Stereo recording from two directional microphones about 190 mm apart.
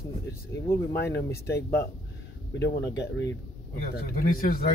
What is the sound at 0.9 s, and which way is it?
Speech, 60° left (ahead or behind).